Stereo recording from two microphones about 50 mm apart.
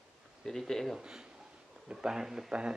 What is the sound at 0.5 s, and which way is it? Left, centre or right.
Speech, centre.